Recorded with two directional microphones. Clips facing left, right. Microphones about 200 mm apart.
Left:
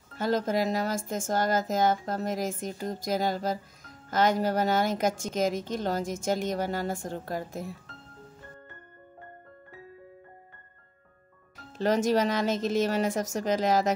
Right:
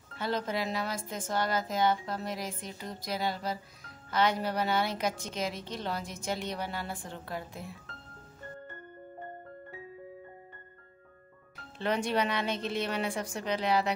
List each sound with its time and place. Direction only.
0.2 s a woman's voice: 45° left (ahead or behind)
11.8 s a woman's voice: 40° left (ahead or behind)